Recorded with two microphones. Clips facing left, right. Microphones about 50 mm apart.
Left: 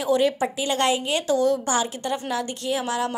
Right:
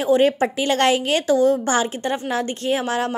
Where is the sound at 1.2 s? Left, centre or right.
Right.